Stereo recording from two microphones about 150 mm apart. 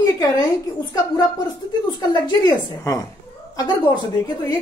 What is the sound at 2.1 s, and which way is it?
Speech, 30° left (ahead or behind).